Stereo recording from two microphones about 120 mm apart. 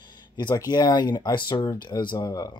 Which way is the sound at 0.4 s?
35° left (ahead or behind).